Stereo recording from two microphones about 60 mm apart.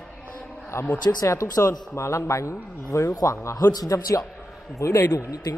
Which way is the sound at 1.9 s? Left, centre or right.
Left.